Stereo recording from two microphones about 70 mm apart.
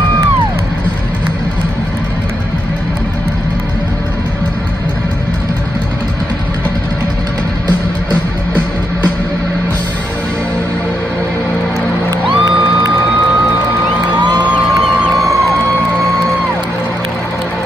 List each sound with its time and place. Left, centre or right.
12.1 s music: right
14.2 s music: right